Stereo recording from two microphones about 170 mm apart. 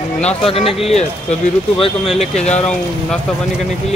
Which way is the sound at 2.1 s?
40° left (ahead or behind).